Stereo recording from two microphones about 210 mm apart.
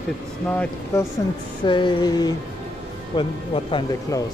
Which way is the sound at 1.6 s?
20° left (ahead or behind).